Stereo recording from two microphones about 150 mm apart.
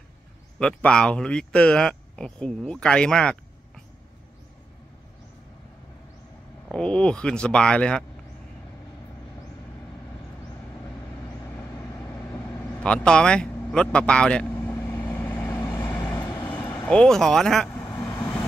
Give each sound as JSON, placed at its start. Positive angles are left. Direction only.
{"t": 0.6, "sound": "speech", "side_deg": 5}
{"t": 6.7, "sound": "speech", "side_deg": 5}
{"t": 11.4, "sound": "vehicle", "side_deg": 20}
{"t": 16.0, "sound": "vehicle", "side_deg": 25}
{"t": 16.8, "sound": "speech", "side_deg": 5}
{"t": 17.6, "sound": "vehicle", "side_deg": 10}